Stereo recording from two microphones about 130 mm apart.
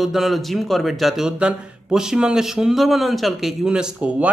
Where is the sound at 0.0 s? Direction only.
Centre (ahead or behind).